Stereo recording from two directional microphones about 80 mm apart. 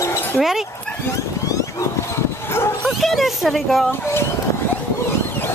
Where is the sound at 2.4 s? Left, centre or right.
Left.